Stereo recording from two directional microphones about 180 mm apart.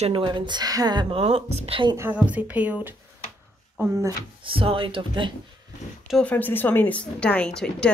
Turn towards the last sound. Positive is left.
turn(degrees=5)  # may be behind; listen again after turning